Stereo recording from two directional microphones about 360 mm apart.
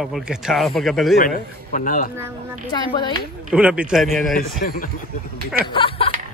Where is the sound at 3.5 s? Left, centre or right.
Centre.